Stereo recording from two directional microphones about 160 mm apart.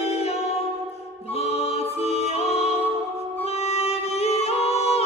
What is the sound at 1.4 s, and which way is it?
Music, 40° left (ahead or behind).